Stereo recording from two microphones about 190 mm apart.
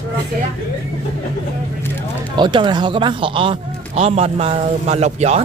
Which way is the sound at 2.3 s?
25° right (ahead or behind).